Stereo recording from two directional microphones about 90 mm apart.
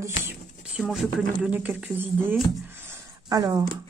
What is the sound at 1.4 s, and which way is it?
Speech, 15° right (ahead or behind).